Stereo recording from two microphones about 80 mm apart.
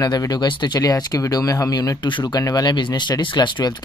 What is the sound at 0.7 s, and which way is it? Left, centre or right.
Speech, left.